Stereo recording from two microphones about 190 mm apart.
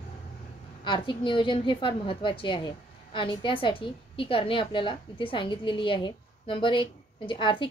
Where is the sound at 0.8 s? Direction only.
25° left (ahead or behind).